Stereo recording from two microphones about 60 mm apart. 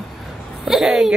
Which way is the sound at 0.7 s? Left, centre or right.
Centre.